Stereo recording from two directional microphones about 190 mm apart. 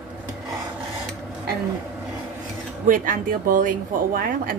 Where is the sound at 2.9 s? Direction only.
45° right (ahead or behind).